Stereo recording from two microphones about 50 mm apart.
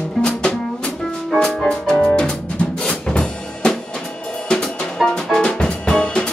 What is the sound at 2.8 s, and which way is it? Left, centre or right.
Drum kit, centre.